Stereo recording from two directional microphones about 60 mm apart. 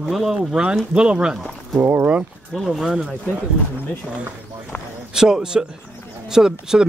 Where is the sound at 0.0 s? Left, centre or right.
Centre.